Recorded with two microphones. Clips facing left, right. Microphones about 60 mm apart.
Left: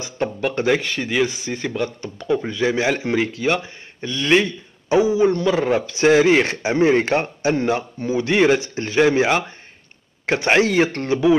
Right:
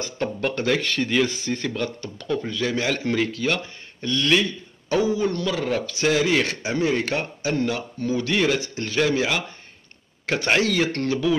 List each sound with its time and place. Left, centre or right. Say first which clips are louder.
0.0 s a man's voice: left 3 dB; centre
4.3 s a man's voice: left 5 dB; left
4.8 s a man's voice: left 6 dB; centre